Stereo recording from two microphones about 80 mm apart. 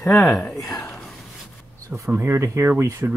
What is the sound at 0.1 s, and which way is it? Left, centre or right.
Speech, centre.